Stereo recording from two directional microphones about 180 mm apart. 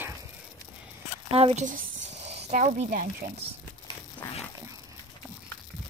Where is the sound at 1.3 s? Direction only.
35° right (ahead or behind).